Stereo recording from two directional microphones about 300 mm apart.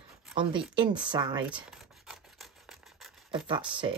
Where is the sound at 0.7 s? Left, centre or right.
Centre.